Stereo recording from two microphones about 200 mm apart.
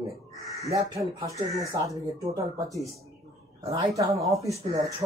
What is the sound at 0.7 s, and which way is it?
Speech, 15° right (ahead or behind).